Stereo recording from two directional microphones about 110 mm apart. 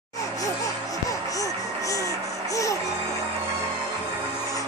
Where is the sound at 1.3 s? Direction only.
30° left (ahead or behind).